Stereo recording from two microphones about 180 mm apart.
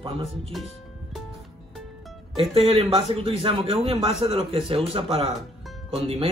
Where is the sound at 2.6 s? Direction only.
35° right (ahead or behind).